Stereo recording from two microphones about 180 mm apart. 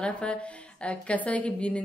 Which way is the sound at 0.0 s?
5° left (ahead or behind).